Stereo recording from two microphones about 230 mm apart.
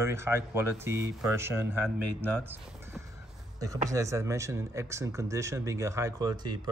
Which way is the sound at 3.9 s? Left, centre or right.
Centre.